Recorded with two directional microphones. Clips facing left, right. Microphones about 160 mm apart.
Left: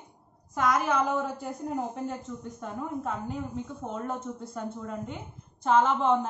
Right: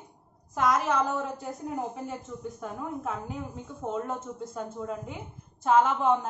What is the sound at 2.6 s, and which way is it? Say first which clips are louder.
Speech: left 3 dB; 5° right (ahead or behind).